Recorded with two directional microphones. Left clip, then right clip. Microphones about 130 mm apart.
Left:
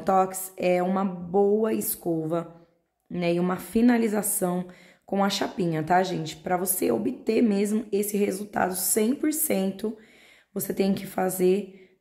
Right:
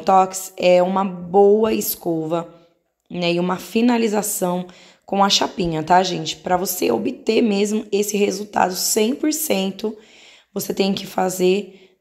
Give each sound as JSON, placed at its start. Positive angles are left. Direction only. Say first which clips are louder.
{"t": 0.0, "sound": "a woman's voice", "louder": "right 8 dB", "side_deg": -5}
{"t": 5.2, "sound": "a woman's voice", "louder": "right 9 dB", "side_deg": -10}